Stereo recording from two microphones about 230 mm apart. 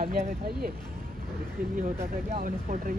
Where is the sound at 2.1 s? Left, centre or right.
Right.